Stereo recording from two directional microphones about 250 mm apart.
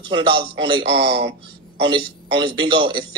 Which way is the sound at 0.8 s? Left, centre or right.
Right.